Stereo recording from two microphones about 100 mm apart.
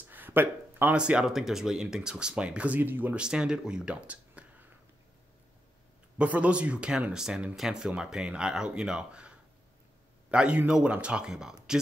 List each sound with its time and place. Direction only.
0.1 s a sound: 20° right (ahead or behind)
0.9 s speech: 10° right (ahead or behind)
3.3 s speech: 10° right (ahead or behind)
6.1 s speech: 15° right (ahead or behind)